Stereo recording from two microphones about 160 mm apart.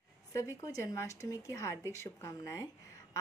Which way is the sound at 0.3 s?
20° left (ahead or behind).